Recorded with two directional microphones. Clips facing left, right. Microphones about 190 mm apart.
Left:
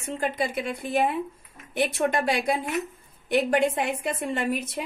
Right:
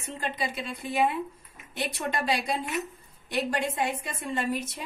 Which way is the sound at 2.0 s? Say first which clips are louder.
Left 2 dB; 55° left (ahead or behind).